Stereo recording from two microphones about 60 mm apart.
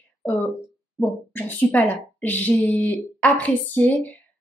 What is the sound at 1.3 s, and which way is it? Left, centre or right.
Speech, left.